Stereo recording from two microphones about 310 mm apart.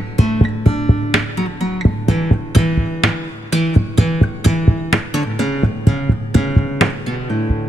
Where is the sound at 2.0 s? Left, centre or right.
Centre.